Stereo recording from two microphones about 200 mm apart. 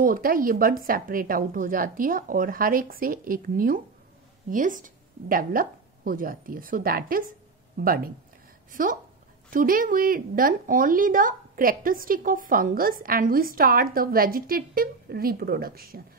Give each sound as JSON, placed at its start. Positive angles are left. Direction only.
{"t": 0.0, "sound": "a woman's voice", "side_deg": -45}
{"t": 9.5, "sound": "a woman's voice", "side_deg": -45}